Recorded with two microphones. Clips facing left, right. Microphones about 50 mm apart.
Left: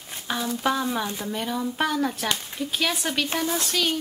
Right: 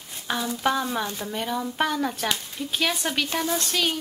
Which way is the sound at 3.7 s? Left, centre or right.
Centre.